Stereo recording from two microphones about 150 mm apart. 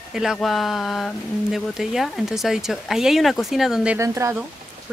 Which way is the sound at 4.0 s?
20° right (ahead or behind).